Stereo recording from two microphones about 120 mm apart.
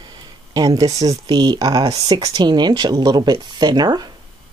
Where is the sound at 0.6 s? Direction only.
30° right (ahead or behind).